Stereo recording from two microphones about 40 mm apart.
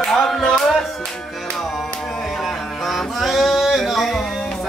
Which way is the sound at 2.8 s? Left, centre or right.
Centre.